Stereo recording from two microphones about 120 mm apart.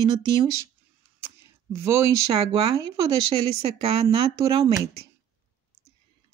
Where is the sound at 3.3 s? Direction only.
55° right (ahead or behind).